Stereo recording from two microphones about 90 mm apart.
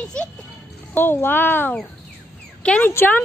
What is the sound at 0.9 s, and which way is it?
Speech, 25° left (ahead or behind).